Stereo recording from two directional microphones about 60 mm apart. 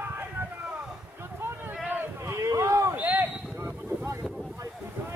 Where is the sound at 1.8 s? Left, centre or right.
Right.